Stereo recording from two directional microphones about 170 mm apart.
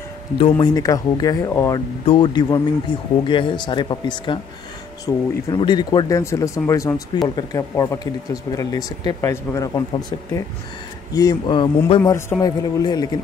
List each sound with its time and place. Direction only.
0.4 s speech: 25° left (ahead or behind)
2.0 s speech: 30° left (ahead or behind)
12.0 s speech: 15° left (ahead or behind)